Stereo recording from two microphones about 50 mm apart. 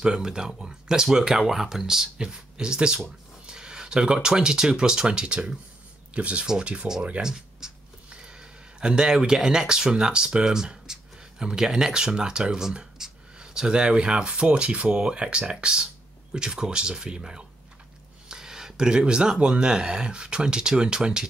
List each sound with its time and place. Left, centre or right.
0.0 s speech: centre